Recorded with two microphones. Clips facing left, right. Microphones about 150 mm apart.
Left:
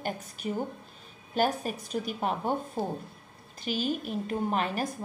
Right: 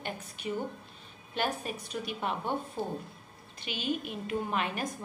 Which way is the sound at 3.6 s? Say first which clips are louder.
Left 3 dB; 40° left (ahead or behind).